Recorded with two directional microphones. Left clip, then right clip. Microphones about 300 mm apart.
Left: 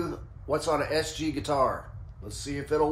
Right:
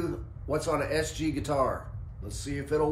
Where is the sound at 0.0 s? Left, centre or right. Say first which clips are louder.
Even; centre.